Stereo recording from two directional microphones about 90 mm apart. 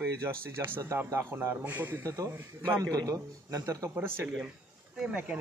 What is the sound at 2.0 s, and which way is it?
Speech, 40° right (ahead or behind).